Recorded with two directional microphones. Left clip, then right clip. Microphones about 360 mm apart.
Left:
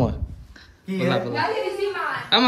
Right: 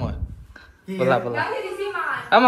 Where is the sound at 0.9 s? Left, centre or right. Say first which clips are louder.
Right 3 dB; centre.